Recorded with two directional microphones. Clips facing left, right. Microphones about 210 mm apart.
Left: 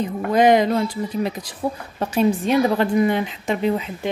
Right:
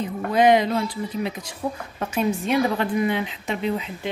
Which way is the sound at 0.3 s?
45° left (ahead or behind).